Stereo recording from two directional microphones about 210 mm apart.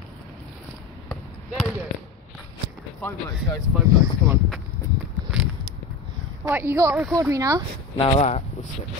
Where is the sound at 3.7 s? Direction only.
5° right (ahead or behind).